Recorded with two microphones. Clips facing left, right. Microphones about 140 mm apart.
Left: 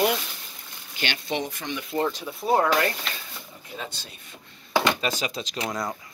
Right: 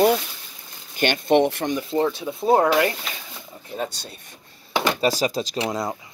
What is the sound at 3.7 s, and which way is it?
Speech, 40° right (ahead or behind).